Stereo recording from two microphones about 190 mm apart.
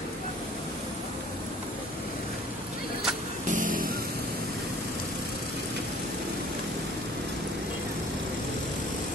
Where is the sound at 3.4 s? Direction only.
45° right (ahead or behind).